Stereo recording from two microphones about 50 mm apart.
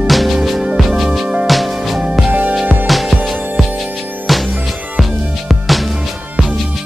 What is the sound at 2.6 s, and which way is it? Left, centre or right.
Music, right.